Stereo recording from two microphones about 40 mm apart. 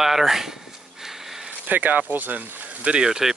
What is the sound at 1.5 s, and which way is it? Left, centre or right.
Speech, right.